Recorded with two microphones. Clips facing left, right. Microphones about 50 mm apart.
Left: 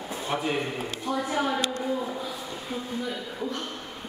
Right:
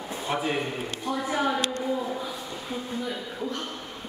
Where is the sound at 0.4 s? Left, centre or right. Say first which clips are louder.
Even; centre.